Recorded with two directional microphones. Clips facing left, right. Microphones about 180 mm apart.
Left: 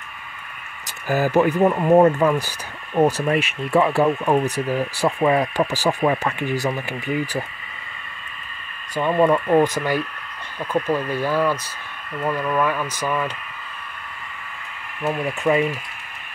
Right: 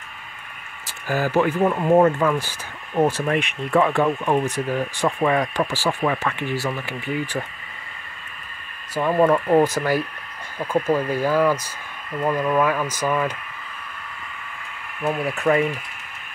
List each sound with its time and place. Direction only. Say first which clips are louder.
1.0 s speech: left 2 dB; 15° left (ahead or behind)
8.9 s speech: even; 5° right (ahead or behind)
15.0 s speech: even; 5° right (ahead or behind)